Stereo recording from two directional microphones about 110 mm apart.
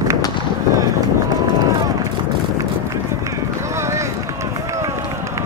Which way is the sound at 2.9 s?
25° right (ahead or behind).